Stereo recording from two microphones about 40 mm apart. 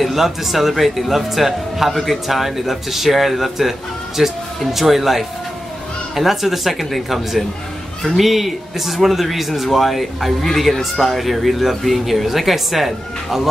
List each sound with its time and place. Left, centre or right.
0.0 s speech: centre